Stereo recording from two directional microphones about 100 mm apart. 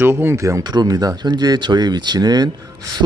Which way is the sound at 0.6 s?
40° right (ahead or behind).